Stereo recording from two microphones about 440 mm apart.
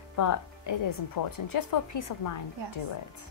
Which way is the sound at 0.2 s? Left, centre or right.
Left.